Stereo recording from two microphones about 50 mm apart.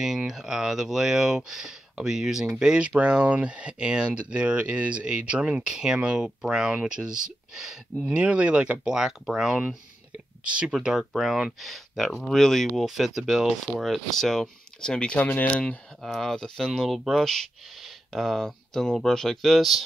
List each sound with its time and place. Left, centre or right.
0.0 s speech: centre
8.1 s speech: right; by 9.6 s centre
10.4 s speech: right
11.1 s speech: centre
15.1 s speech: left
16.0 s speech: centre